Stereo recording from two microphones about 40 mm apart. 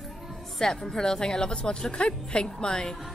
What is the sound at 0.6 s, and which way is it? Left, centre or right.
Speech, centre.